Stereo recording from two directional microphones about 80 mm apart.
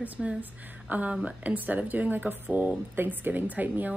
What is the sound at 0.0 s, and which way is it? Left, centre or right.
A woman's voice, centre.